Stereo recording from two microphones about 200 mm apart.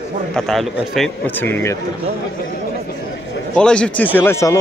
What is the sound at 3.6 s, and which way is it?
A man's voice, 5° left (ahead or behind).